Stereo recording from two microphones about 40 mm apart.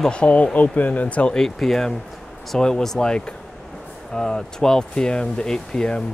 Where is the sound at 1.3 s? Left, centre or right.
Centre.